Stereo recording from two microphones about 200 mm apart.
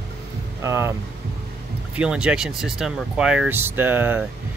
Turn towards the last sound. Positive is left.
turn(degrees=-10)  # may be behind; listen again after turning